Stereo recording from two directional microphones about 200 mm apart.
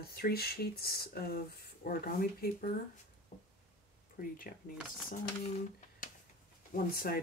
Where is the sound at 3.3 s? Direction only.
45° left (ahead or behind).